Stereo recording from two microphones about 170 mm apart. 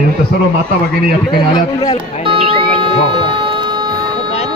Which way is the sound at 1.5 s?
25° left (ahead or behind).